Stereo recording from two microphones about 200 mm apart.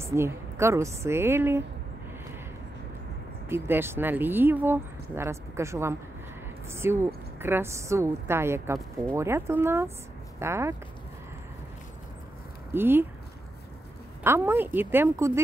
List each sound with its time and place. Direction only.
0.0 s speech: 15° right (ahead or behind)
3.4 s speech: 10° right (ahead or behind)
12.7 s speech: 10° right (ahead or behind)
14.2 s speech: 10° right (ahead or behind)